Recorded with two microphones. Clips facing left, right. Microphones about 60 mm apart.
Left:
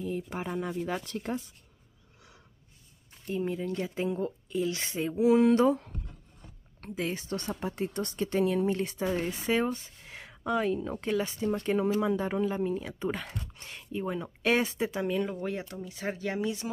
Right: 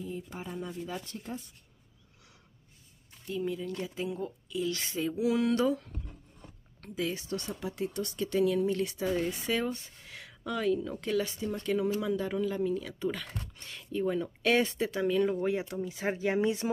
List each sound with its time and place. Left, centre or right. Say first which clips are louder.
0.0 s speech: left 5 dB; left
3.3 s speech: left 2 dB; left; by 15.2 s centre
15.4 s speech: right 4 dB; centre
16.3 s speech: right 4 dB; right